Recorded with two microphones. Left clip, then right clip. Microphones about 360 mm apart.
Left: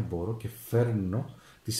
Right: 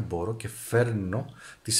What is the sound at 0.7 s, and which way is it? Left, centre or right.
Speech, right.